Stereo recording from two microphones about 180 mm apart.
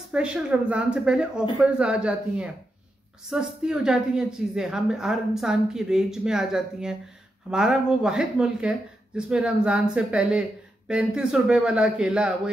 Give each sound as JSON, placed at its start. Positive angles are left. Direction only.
{"t": 0.1, "sound": "speech", "side_deg": -5}